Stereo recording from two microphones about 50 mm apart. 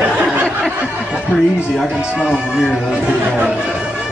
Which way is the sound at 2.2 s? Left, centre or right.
Centre.